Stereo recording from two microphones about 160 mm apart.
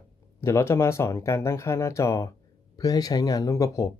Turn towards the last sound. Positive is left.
turn(degrees=20)  # may be behind; listen again after turning